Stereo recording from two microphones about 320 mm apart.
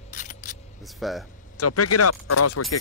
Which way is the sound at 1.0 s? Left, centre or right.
Centre.